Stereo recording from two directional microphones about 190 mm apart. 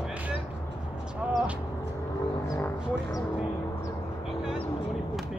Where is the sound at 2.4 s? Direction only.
15° left (ahead or behind).